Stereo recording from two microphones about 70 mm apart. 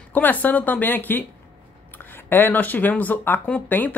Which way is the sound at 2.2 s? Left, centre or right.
Left.